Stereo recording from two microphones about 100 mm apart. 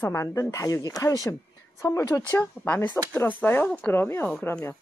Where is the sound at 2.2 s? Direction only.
15° left (ahead or behind).